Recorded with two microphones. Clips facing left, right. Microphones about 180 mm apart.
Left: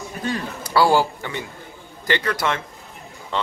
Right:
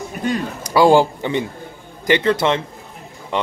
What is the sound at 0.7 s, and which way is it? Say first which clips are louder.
A man's voice: right 5 dB; 20° right (ahead or behind).